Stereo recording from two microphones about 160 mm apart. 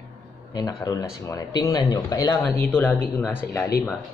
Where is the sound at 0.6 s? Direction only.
25° left (ahead or behind).